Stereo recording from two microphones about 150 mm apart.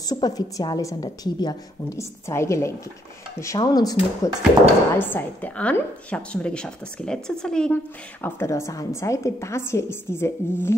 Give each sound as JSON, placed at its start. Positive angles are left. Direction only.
{"t": 0.0, "sound": "a woman's voice", "side_deg": 25}
{"t": 4.9, "sound": "a woman's voice", "side_deg": 15}